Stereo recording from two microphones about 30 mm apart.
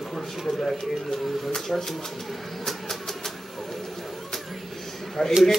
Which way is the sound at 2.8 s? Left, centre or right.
Centre.